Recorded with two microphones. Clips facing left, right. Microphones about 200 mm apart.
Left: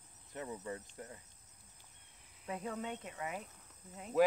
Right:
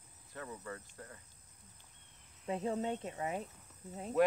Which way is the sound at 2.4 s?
25° right (ahead or behind).